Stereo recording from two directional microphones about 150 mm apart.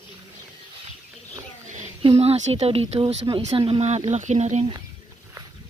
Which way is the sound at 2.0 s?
40° right (ahead or behind).